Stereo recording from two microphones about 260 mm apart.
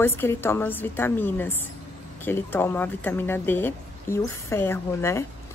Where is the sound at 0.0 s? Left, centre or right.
Centre.